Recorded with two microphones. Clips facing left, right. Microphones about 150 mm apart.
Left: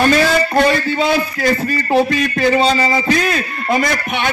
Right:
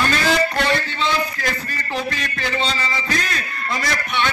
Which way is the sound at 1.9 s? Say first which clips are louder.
Left 11 dB; 45° left (ahead or behind).